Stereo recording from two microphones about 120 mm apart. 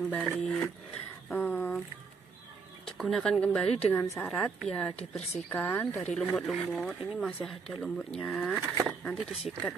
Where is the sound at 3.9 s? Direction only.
25° left (ahead or behind).